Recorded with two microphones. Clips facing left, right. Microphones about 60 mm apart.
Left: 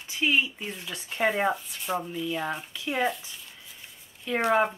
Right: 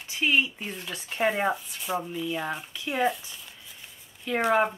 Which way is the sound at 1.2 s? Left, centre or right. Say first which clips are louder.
Even; centre.